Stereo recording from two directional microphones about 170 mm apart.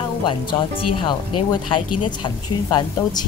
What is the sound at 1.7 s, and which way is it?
A woman's voice, 30° left (ahead or behind).